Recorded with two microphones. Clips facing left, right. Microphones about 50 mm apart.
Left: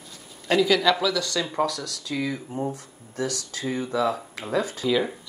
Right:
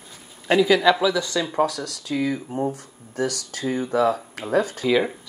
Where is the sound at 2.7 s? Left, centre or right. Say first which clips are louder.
Right 4 dB; right.